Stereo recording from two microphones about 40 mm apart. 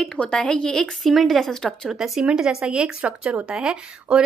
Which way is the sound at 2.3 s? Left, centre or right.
Centre.